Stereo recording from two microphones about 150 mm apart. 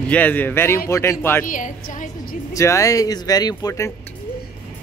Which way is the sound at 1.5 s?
60° left (ahead or behind).